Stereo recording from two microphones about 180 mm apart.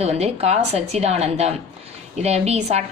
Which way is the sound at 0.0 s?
35° right (ahead or behind).